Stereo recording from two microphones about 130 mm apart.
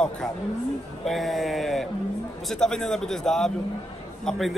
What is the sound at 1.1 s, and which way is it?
A man's voice, centre (ahead or behind).